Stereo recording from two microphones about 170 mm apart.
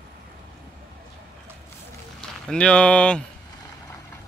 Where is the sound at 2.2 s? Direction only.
5° left (ahead or behind).